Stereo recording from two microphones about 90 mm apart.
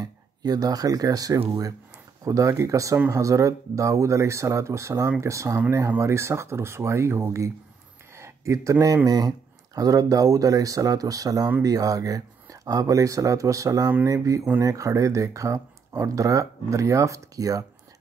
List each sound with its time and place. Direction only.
0.0 s speech: 45° right (ahead or behind)
8.2 s a sound: 35° right (ahead or behind)
8.8 s speech: 45° right (ahead or behind)